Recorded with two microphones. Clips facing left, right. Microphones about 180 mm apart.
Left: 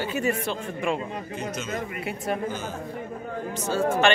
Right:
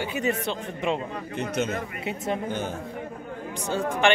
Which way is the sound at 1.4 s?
60° right (ahead or behind).